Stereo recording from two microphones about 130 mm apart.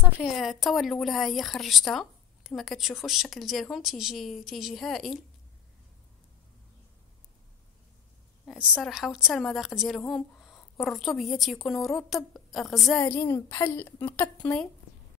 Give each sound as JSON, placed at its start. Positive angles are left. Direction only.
{"t": 0.2, "sound": "speech", "side_deg": 0}
{"t": 8.5, "sound": "speech", "side_deg": -5}
{"t": 12.4, "sound": "a sound", "side_deg": 0}
{"t": 13.0, "sound": "a woman's voice", "side_deg": 25}